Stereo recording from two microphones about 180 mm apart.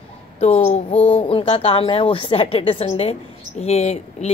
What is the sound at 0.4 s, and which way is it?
Speech, 35° left (ahead or behind).